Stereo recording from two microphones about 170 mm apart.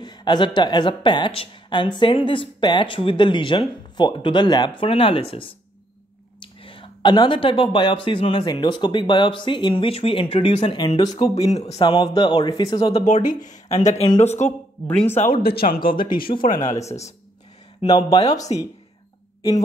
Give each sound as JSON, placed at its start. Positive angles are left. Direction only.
{"t": 0.0, "sound": "a sound", "side_deg": 25}
{"t": 0.6, "sound": "speech", "side_deg": 25}
{"t": 11.3, "sound": "a man's voice", "side_deg": 40}
{"t": 12.9, "sound": "a man's voice", "side_deg": 45}
{"t": 15.4, "sound": "speech", "side_deg": 60}
{"t": 17.8, "sound": "speech", "side_deg": 25}